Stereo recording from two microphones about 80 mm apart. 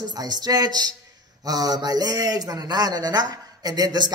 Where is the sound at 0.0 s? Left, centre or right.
Right.